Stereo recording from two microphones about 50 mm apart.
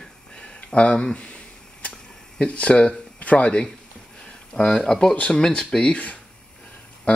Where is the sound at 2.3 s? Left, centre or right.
Left.